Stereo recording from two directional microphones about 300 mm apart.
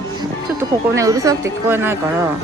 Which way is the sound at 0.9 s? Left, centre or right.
Centre.